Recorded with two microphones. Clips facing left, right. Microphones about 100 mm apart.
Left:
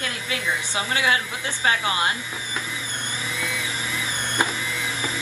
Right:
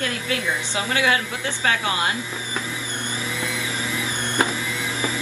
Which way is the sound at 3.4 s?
15° right (ahead or behind).